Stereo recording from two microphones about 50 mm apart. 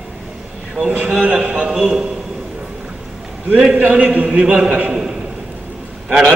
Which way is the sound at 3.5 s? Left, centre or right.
Centre.